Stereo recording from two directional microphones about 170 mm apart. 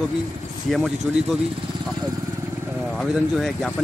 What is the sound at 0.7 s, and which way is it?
Speech, centre (ahead or behind).